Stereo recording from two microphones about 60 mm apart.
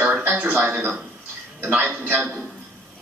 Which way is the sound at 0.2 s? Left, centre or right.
Right.